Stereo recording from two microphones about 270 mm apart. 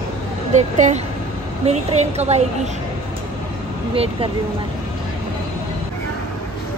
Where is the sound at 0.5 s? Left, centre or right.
Right.